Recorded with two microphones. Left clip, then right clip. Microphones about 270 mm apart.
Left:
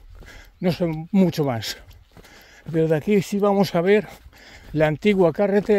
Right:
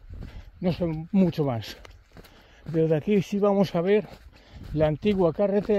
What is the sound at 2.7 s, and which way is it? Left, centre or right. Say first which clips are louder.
Speech: left 4 dB; left.